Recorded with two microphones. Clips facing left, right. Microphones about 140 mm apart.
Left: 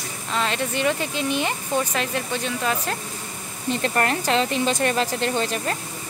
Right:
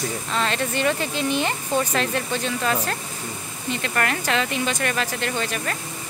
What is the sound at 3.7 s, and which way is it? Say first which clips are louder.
Speech: left 3 dB; 35° left (ahead or behind).